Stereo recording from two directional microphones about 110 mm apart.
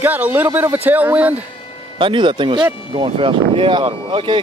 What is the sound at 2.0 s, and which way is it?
Speech, 50° right (ahead or behind).